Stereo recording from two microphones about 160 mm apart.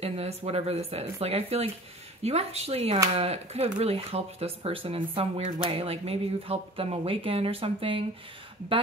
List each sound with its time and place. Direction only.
0.0 s speech: 40° right (ahead or behind)